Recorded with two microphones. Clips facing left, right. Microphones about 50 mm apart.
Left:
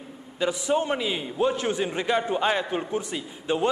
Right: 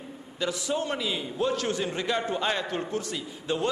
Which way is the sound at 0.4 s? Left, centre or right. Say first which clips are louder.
Left 5 dB; left.